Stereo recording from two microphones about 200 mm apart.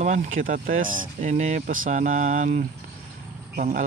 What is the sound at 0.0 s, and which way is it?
Speech, 40° right (ahead or behind).